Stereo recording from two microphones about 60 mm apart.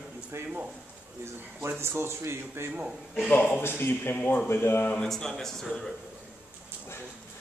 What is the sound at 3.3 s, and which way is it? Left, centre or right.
Speech, left.